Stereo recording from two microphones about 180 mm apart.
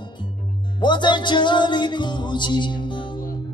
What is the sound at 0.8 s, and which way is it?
Music, 25° left (ahead or behind).